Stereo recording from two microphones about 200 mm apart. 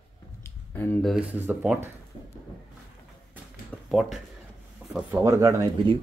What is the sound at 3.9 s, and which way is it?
Speech, centre (ahead or behind).